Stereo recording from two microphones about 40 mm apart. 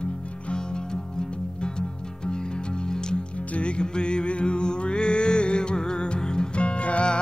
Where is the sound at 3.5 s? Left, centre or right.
Left.